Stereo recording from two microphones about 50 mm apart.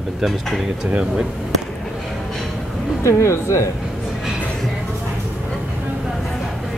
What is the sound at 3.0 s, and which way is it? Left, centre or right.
Speech, left.